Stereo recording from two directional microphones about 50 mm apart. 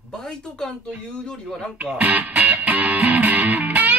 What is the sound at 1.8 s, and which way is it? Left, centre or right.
Music, right.